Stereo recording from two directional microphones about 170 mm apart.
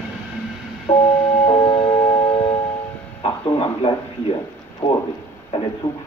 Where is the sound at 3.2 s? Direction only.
30° left (ahead or behind).